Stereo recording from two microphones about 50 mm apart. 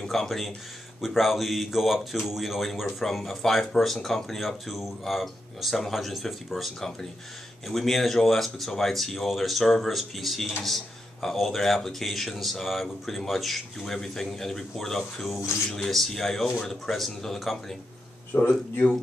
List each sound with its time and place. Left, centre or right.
0.1 s speech: centre
18.3 s speech: left